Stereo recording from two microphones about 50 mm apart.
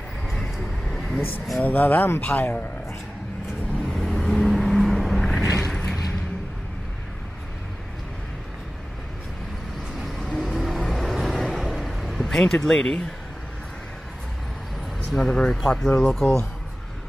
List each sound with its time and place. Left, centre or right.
1.6 s speech: left
3.9 s vehicle: centre
5.7 s a sound: centre
9.9 s vehicle: centre
15.0 s speech: centre